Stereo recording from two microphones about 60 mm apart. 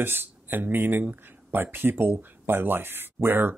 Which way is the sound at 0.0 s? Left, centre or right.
Right.